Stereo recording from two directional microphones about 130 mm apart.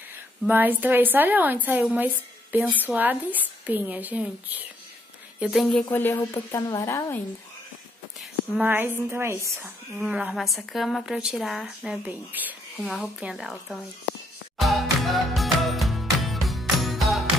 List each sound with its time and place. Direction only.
0.5 s a woman's voice: 15° right (ahead or behind)
5.4 s a woman's voice: centre (ahead or behind)
5.9 s speech: 15° left (ahead or behind)
8.6 s a woman's voice: 15° right (ahead or behind)
9.9 s a woman's voice: 5° right (ahead or behind)
12.7 s a woman's voice: centre (ahead or behind)
14.6 s music: centre (ahead or behind)